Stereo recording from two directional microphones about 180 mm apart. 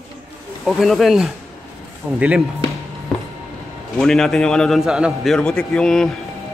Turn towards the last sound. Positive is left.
turn(degrees=5)  # may be behind; listen again after turning